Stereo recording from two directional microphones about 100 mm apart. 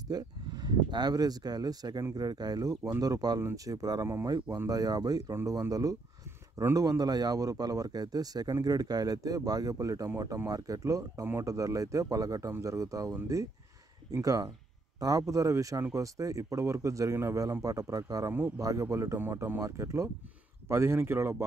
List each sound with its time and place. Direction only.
0.1 s a man's voice: 40° right (ahead or behind); by 21.5 s 25° right (ahead or behind)